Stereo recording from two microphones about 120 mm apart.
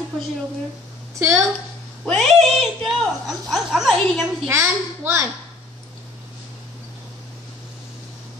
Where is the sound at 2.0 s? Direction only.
5° left (ahead or behind).